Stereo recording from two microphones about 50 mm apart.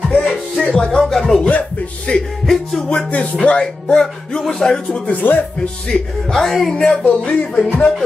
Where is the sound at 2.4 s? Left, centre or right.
Centre.